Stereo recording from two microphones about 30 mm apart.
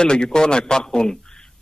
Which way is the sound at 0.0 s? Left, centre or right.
Left.